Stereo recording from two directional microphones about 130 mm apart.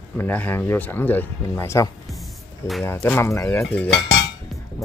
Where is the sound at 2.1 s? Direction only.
Centre (ahead or behind).